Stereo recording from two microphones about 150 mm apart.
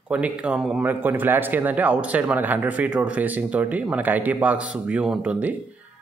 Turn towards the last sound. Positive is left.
turn(degrees=-10)  # may be behind; listen again after turning